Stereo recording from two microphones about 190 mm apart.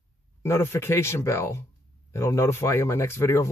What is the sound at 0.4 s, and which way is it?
Speech, 15° left (ahead or behind).